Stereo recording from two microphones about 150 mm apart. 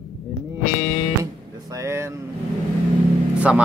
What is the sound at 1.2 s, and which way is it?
Speech, 20° right (ahead or behind).